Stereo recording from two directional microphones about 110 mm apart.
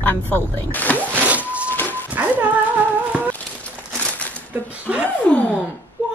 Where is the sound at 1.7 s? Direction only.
15° left (ahead or behind).